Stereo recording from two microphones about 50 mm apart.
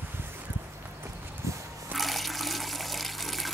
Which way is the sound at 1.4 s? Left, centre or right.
Right.